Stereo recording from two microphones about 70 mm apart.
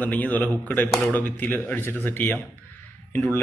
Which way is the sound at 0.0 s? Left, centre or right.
Left.